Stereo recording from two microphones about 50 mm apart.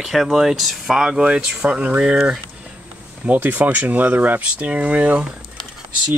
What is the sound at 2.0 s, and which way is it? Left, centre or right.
Speech, centre.